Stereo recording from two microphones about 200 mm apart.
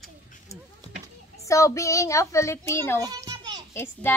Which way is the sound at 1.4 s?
15° left (ahead or behind).